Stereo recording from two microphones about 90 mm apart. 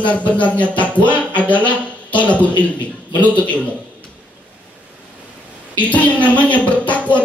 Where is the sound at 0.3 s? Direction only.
15° left (ahead or behind).